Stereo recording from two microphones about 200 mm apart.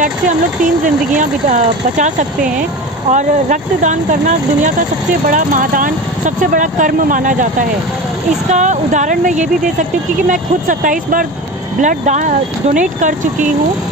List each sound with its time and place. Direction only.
0.0 s speech: 40° right (ahead or behind)
8.5 s speech: 35° right (ahead or behind)